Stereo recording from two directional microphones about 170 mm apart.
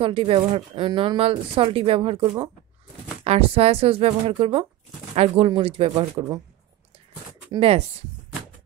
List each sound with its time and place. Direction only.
0.0 s speech: 30° right (ahead or behind)
7.5 s speech: 35° right (ahead or behind)